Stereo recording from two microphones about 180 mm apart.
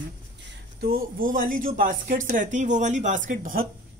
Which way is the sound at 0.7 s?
55° right (ahead or behind).